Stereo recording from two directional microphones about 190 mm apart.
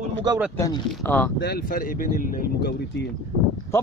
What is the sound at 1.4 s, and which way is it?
Speech, 55° left (ahead or behind).